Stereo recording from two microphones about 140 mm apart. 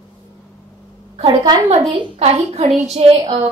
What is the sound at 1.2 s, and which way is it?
Speech, 35° right (ahead or behind).